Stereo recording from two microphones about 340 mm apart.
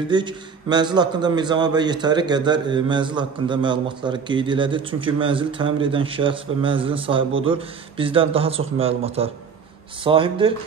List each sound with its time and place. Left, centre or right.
0.1 s a man's voice: centre